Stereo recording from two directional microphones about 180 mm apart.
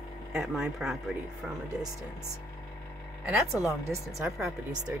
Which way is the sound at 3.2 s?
5° right (ahead or behind).